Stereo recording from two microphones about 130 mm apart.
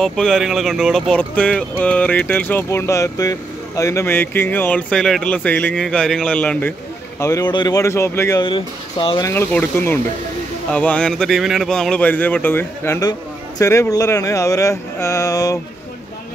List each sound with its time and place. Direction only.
0.0 s speech: 5° left (ahead or behind)
7.2 s speech: 25° left (ahead or behind)
8.4 s speech: 40° left (ahead or behind)
9.3 s speech: 15° left (ahead or behind)